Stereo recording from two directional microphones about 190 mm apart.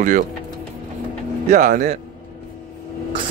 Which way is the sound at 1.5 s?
40° right (ahead or behind).